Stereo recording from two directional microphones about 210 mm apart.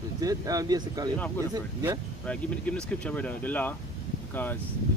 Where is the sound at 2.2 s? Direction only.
5° left (ahead or behind).